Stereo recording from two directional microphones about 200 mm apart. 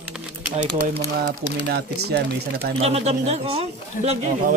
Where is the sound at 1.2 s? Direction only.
55° right (ahead or behind).